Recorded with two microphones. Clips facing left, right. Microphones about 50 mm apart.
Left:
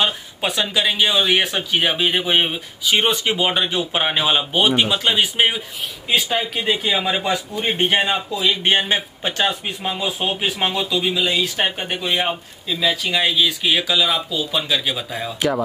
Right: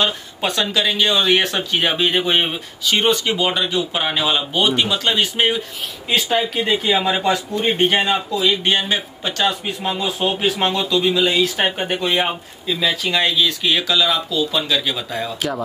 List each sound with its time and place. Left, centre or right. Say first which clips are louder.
0.0 s speech: right 1 dB; centre
3.0 s speech: right 3 dB; centre
6.2 s speech: right 2 dB; centre
7.7 s speech: right 1 dB; centre
8.6 s speech: left 1 dB; left
9.8 s speech: right 2 dB; centre